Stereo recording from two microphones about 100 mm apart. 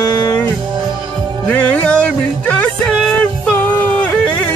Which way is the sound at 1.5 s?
15° left (ahead or behind).